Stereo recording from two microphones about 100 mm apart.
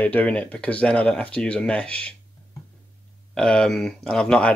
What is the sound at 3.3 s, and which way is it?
Speech, 10° left (ahead or behind).